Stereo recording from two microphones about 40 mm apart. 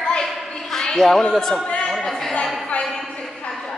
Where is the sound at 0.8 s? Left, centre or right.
Centre.